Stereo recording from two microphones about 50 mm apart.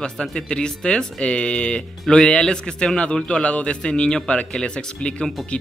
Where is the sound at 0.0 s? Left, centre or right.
Centre.